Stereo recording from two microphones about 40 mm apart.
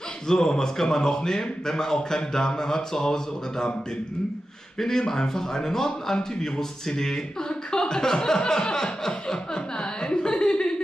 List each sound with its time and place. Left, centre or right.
0.3 s a man's voice: centre
4.7 s a man's voice: centre
10.0 s a sound: left